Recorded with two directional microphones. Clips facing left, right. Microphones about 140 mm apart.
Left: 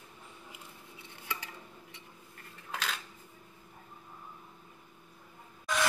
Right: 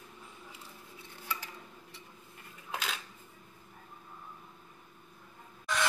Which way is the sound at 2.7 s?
10° right (ahead or behind).